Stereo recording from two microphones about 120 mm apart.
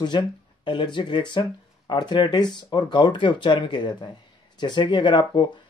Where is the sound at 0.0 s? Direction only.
40° left (ahead or behind).